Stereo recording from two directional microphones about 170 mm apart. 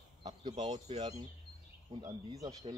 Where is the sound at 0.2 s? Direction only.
25° right (ahead or behind).